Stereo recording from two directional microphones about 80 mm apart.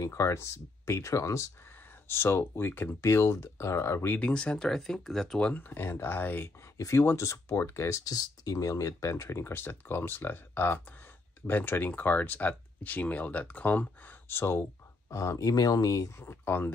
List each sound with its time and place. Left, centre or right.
0.0 s speech: left
2.0 s speech: left
4.3 s speech: centre
5.5 s speech: left
7.2 s speech: left
8.1 s speech: left
15.0 s speech: left